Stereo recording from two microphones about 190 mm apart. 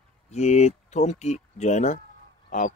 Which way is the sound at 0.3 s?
35° left (ahead or behind).